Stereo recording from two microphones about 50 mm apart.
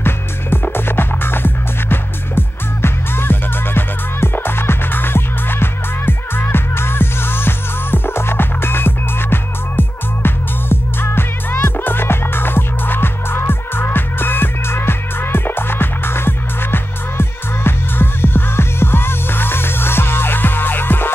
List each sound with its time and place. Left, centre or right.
0.0 s music: left